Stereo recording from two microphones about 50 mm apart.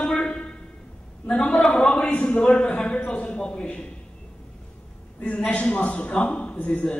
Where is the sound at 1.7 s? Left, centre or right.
Left.